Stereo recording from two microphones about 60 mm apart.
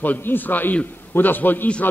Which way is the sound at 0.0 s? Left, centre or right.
Left.